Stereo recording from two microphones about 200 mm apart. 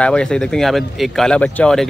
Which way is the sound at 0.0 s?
5° left (ahead or behind).